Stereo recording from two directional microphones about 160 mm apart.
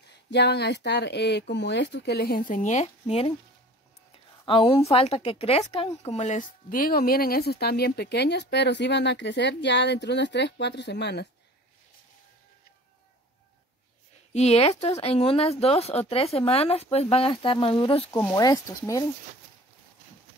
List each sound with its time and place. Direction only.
0.3 s speech: 90° left; by 3.3 s 40° left (ahead or behind)
4.5 s speech: 35° left (ahead or behind)
5.7 s speech: 25° left (ahead or behind)
6.0 s speech: 45° left (ahead or behind); by 11.2 s 90° left
14.3 s speech: 40° left (ahead or behind)
18.2 s speech: 25° left (ahead or behind)